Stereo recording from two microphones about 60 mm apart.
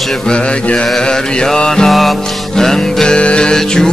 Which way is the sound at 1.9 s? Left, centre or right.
Centre.